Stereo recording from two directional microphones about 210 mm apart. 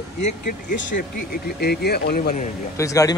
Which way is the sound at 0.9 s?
45° left (ahead or behind).